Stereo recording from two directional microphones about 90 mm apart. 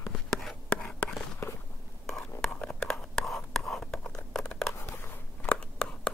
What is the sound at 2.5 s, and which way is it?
Whispering, 15° left (ahead or behind).